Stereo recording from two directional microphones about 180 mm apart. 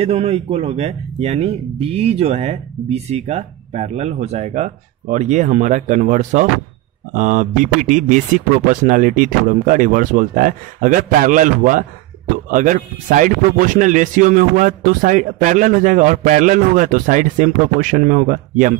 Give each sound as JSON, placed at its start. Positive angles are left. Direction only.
{"t": 0.0, "sound": "speech", "side_deg": -35}